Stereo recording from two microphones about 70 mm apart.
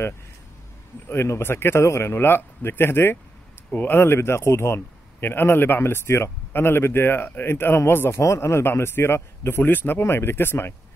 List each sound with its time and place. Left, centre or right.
1.0 s a man's voice: left